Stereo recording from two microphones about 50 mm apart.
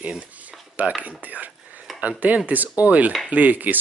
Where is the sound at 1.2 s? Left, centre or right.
Right.